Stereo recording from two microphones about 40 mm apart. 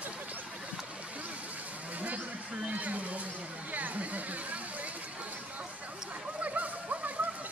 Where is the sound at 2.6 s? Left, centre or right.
Right.